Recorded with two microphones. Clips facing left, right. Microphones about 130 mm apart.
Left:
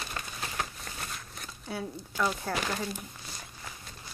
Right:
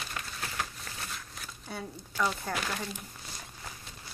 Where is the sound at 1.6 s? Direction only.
5° left (ahead or behind).